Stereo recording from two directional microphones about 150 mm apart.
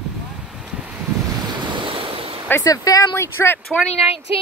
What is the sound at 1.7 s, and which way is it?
Waves, 35° right (ahead or behind).